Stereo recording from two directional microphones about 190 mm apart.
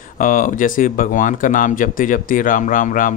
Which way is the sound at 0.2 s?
45° left (ahead or behind).